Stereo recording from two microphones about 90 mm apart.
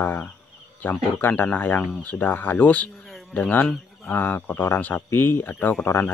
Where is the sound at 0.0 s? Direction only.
20° left (ahead or behind).